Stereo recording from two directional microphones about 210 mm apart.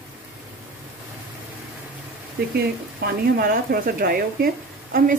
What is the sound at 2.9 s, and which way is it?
Speech, 45° right (ahead or behind).